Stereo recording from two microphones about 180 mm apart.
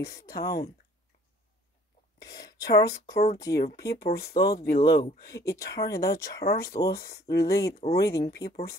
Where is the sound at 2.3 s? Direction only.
20° left (ahead or behind).